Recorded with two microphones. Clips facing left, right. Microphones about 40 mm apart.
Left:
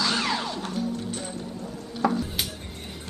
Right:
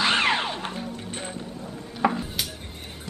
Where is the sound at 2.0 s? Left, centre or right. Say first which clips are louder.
Right 1 dB; right.